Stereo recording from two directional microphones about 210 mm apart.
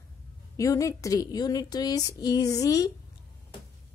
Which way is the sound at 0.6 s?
15° left (ahead or behind).